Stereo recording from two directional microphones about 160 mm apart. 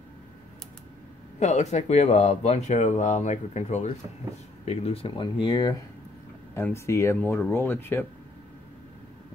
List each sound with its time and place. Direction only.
1.4 s speech: 45° left (ahead or behind); by 8.1 s 15° left (ahead or behind)